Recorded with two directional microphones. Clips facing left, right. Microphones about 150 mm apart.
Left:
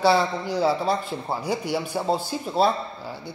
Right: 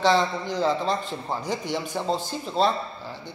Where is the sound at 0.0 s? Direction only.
10° left (ahead or behind).